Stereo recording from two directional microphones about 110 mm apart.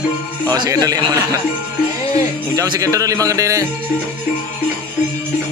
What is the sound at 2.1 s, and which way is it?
Speech, 30° right (ahead or behind).